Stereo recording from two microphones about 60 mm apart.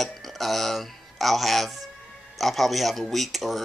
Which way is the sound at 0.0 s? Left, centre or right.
Centre.